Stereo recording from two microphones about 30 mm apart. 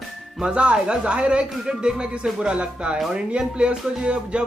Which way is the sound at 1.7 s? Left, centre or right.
Right.